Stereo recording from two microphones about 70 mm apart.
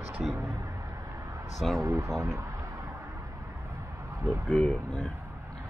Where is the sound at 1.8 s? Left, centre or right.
Right.